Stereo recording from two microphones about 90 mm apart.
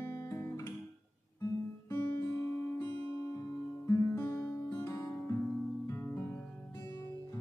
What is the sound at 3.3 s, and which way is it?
Music, 35° left (ahead or behind).